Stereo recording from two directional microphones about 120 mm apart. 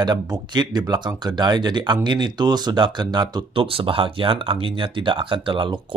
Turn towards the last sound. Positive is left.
turn(degrees=-45)  # may be behind; listen again after turning